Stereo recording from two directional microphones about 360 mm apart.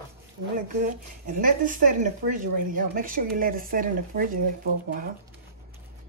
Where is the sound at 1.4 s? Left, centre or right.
Right.